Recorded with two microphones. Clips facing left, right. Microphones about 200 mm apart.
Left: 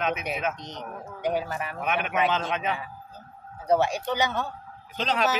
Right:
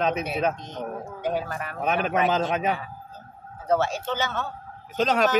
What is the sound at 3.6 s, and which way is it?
Speech, 15° left (ahead or behind).